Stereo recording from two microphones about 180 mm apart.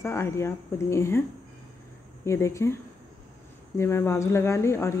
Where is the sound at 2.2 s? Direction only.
15° left (ahead or behind).